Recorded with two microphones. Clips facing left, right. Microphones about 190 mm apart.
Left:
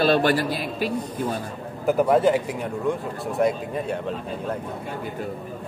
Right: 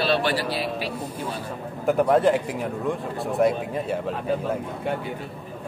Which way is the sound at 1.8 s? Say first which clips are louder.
Even; centre (ahead or behind).